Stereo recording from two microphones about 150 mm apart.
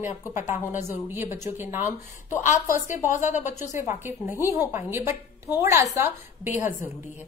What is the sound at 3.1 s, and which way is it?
Speech, 55° left (ahead or behind).